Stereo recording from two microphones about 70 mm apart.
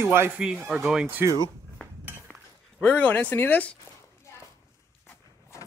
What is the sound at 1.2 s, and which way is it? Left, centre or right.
Speech, right.